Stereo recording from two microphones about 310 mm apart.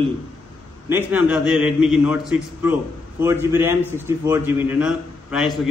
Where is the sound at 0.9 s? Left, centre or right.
Centre.